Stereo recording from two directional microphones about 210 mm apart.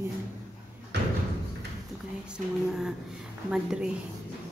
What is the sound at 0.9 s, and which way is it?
Slam, 55° right (ahead or behind).